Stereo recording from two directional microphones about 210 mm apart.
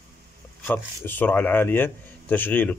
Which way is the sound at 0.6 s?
10° left (ahead or behind).